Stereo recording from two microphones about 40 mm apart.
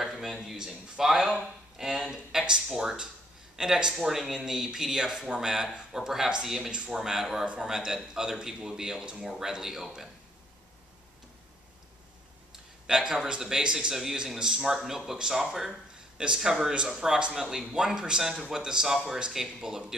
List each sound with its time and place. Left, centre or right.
0.0 s a sound: centre
0.9 s speech: centre
6.7 s speech: centre
12.8 s speech: centre